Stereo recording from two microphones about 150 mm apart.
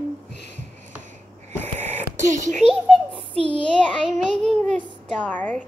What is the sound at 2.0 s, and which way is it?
Speech, 55° right (ahead or behind).